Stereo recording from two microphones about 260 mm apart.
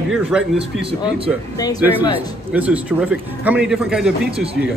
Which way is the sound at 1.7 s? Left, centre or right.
Centre.